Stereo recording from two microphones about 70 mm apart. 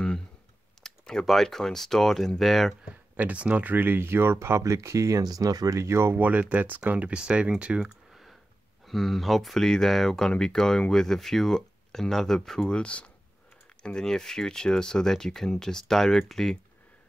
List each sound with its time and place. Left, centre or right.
0.8 s speech: centre
2.8 s speech: centre; by 5.2 s right
5.2 s speech: right
5.8 s speech: right
6.1 s speech: right
8.1 s clicking: centre
8.8 s speech: centre